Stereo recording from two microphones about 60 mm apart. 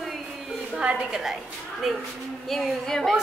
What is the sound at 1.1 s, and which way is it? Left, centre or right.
Speech, centre.